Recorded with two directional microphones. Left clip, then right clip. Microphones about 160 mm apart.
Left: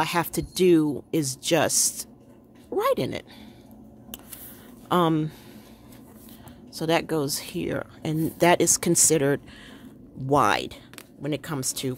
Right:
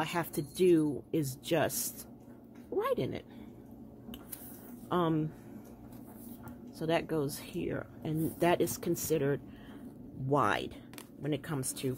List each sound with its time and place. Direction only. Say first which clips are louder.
0.0 s speech: left 9 dB; 30° left (ahead or behind)
4.8 s speech: left 9 dB; 40° left (ahead or behind)
6.8 s speech: left 8 dB; 30° left (ahead or behind)
10.3 s speech: left 9 dB; 25° left (ahead or behind)